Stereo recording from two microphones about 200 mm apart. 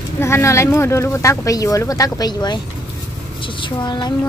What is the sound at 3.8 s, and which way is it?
Speech, 20° left (ahead or behind).